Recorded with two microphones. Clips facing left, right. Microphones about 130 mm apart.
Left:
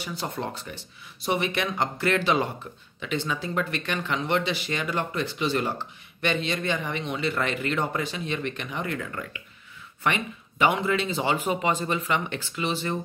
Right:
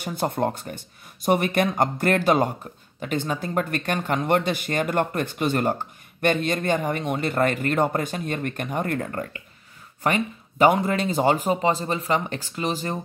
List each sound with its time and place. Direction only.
0.0 s speech: 50° right (ahead or behind)